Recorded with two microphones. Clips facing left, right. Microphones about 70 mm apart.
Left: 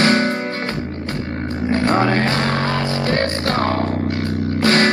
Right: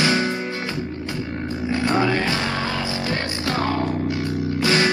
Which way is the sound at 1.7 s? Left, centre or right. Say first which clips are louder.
Left 4 dB; left.